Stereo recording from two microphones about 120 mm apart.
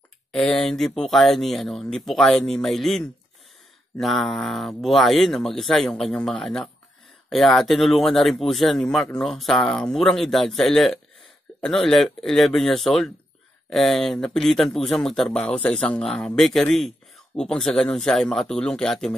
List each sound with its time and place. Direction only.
0.3 s speech: 5° left (ahead or behind)